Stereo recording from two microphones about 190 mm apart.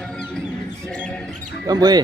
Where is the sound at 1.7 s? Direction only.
20° right (ahead or behind).